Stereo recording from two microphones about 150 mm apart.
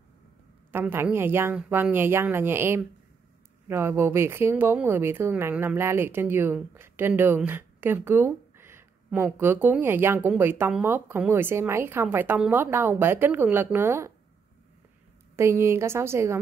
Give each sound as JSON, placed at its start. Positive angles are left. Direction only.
{"t": 0.7, "sound": "speech", "side_deg": -15}
{"t": 15.3, "sound": "speech", "side_deg": -20}